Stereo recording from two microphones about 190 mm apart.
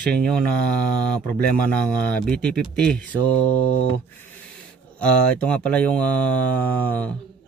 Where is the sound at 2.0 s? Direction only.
5° left (ahead or behind).